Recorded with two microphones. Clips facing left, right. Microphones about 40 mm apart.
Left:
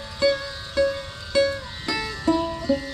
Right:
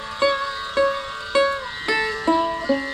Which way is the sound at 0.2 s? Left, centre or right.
Right.